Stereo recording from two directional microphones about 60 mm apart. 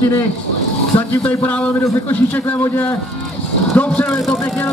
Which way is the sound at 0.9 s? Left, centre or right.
Left.